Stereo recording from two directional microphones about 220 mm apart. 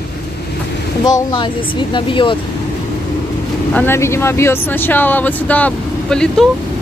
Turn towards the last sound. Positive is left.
turn(degrees=5)  # may be behind; listen again after turning